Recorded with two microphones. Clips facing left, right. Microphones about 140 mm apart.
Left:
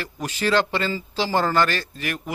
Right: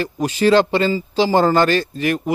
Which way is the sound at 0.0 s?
20° right (ahead or behind).